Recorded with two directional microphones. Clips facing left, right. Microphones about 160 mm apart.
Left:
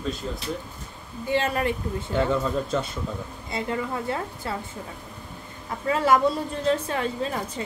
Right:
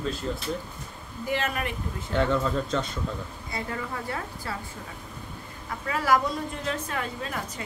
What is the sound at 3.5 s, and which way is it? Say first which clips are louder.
A woman's voice: left 5 dB; 25° left (ahead or behind).